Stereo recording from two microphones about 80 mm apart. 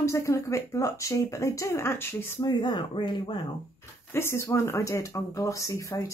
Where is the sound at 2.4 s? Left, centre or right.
Left.